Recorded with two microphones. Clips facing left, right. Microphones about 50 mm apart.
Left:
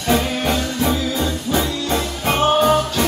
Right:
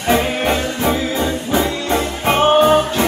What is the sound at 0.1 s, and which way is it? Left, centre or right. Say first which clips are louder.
Music: right 3 dB; right.